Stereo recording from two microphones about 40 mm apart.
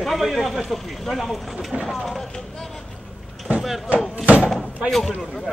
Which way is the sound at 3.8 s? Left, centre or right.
Right.